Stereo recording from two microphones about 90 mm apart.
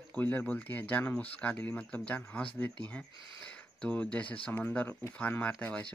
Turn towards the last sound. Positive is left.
turn(degrees=20)  # may be behind; listen again after turning